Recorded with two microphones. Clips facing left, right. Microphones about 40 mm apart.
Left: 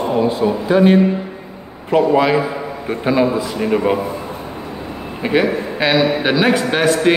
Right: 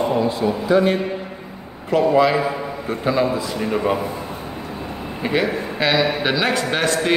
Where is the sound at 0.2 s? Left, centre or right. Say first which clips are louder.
Left 4 dB; left.